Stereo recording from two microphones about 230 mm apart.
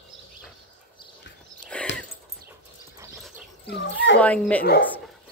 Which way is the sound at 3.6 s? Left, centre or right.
Left.